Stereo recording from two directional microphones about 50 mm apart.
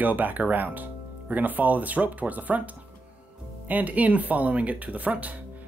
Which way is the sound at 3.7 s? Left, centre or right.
Right.